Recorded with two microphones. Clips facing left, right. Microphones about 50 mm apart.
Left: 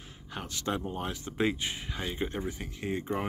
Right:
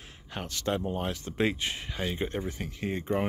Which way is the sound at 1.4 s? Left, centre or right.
Right.